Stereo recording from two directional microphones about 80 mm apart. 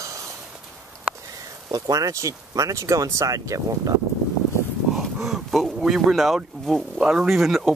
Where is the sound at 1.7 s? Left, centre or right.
Right.